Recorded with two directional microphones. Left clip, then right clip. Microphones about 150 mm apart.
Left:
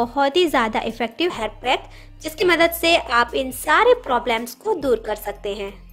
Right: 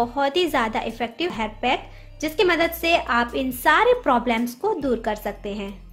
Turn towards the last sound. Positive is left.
turn(degrees=35)  # may be behind; listen again after turning